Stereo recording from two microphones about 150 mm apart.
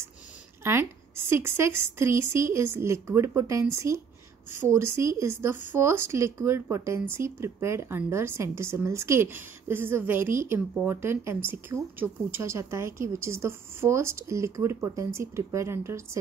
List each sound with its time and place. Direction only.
0.7 s speech: 15° right (ahead or behind)